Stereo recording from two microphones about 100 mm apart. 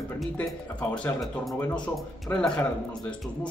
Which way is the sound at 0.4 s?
15° left (ahead or behind).